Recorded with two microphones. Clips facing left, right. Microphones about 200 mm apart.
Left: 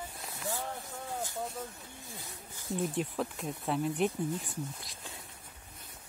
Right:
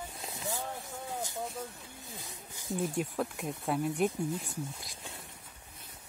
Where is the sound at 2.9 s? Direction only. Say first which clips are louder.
Right 1 dB; centre (ahead or behind).